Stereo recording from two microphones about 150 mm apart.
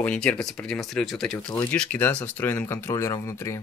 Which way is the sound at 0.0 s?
5° left (ahead or behind).